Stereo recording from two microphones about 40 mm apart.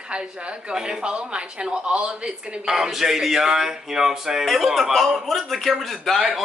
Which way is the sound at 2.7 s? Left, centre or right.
Centre.